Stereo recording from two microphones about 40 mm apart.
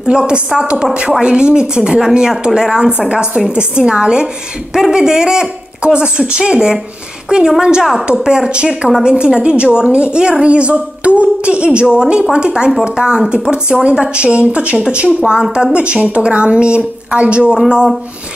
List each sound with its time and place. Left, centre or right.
0.0 s a woman's voice: centre